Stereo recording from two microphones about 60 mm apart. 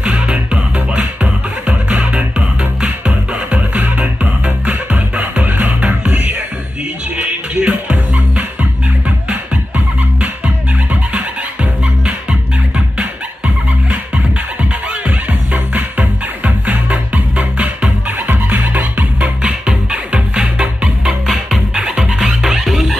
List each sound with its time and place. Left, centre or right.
0.0 s music: right
11.8 s music: centre
14.1 s music: right
19.1 s music: centre
21.3 s music: centre